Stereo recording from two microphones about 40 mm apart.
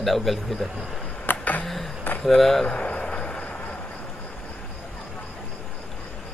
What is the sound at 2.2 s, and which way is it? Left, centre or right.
Speech, centre.